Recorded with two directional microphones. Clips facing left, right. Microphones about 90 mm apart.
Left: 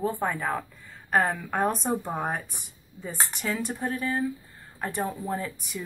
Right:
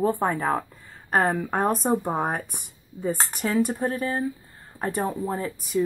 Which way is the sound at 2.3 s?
50° right (ahead or behind).